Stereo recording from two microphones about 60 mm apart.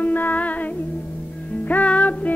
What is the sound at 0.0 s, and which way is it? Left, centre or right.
Music, left.